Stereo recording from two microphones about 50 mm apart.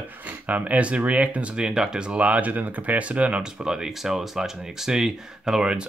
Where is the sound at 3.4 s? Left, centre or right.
Centre.